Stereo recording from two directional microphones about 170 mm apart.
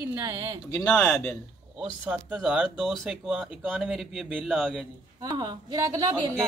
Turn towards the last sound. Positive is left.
turn(degrees=-20)  # may be behind; listen again after turning